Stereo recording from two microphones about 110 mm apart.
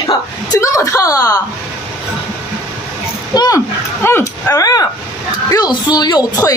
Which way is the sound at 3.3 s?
35° left (ahead or behind).